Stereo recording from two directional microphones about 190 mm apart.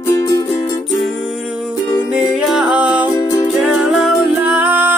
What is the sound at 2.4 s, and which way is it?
Music, centre (ahead or behind).